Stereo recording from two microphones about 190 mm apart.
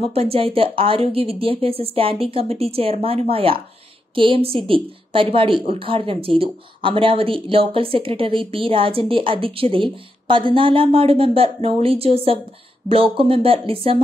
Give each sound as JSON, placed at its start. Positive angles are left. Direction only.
{"t": 0.1, "sound": "speech", "side_deg": -30}